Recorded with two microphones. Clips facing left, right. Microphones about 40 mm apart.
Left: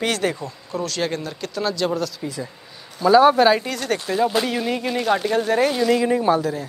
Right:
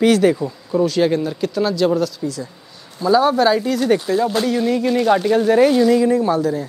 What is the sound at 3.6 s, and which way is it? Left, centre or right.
Speech, centre.